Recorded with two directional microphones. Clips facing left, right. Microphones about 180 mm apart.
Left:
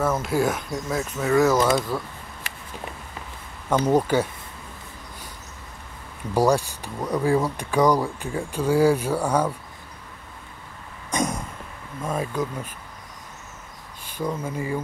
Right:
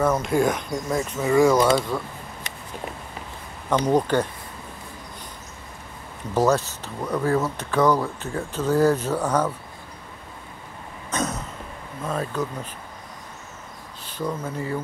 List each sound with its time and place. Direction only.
0.0 s speech: 5° left (ahead or behind)
3.7 s speech: 10° left (ahead or behind)
6.3 s speech: 10° left (ahead or behind)
11.1 s cough: 15° left (ahead or behind)
12.0 s speech: 10° left (ahead or behind)
14.0 s speech: 10° left (ahead or behind)